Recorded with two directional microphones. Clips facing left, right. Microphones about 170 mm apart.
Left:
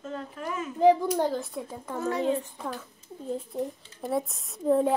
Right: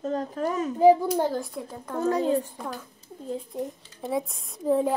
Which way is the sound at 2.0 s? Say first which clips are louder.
Right 4 dB; 35° right (ahead or behind).